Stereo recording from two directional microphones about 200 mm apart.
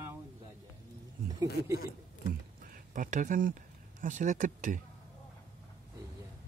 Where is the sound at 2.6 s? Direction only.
45° right (ahead or behind).